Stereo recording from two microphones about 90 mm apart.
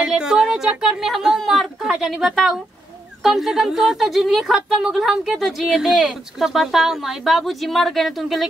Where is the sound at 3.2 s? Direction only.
Centre (ahead or behind).